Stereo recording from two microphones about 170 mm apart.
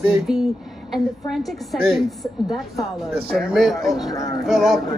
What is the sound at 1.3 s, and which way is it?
Speech, centre (ahead or behind).